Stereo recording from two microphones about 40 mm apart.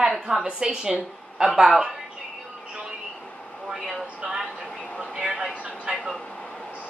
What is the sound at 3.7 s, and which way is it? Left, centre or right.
Speech, centre.